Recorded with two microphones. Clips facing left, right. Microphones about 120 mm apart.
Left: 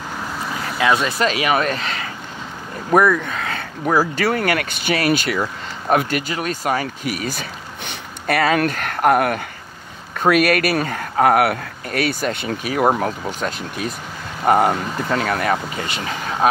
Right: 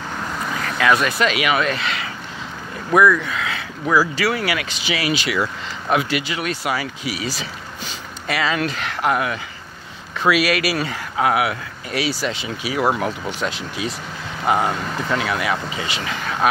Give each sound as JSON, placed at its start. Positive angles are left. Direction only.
{"t": 0.2, "sound": "vehicle", "side_deg": 5}
{"t": 0.7, "sound": "speech", "side_deg": 25}
{"t": 1.1, "sound": "speech", "side_deg": 40}